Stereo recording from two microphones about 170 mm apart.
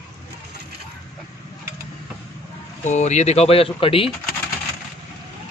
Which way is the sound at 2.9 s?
45° left (ahead or behind).